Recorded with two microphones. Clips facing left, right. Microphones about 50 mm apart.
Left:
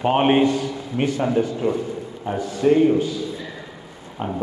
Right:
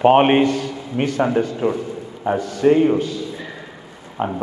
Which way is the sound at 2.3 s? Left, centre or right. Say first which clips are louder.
Right 2 dB; right.